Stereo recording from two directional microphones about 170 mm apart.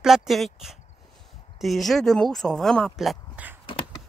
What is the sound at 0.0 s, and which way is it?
Speech, centre (ahead or behind).